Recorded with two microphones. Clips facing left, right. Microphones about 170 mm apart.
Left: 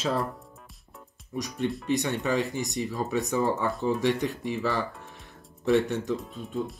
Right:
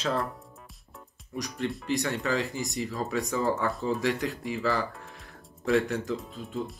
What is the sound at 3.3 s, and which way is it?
Speech, 20° left (ahead or behind).